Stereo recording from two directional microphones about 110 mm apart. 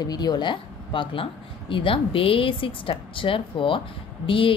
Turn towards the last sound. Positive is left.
turn(degrees=50)  # may be behind; listen again after turning